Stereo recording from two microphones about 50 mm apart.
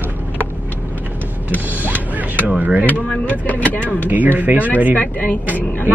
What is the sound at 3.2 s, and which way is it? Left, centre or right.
Speech, left.